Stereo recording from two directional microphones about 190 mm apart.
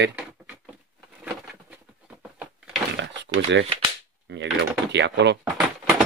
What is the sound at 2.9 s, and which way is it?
Drawer open or close, 65° right (ahead or behind).